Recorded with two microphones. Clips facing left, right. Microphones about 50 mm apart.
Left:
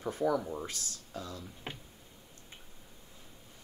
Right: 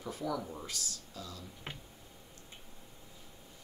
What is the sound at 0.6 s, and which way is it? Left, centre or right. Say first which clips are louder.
Speech: left 1 dB; left.